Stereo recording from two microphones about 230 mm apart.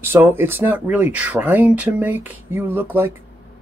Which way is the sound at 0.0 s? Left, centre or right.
Centre.